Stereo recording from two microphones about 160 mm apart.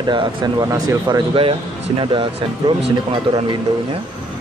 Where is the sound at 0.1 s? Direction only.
30° right (ahead or behind).